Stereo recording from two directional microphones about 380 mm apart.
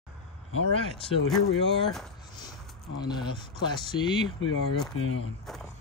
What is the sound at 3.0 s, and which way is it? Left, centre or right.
Speech, centre.